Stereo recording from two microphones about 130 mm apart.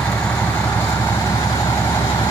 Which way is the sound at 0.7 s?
25° left (ahead or behind).